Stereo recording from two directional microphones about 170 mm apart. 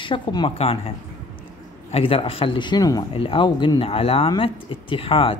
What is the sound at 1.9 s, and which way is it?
Speech, 35° left (ahead or behind).